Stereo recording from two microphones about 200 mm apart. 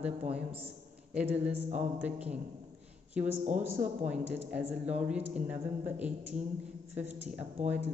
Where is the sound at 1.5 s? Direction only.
35° right (ahead or behind).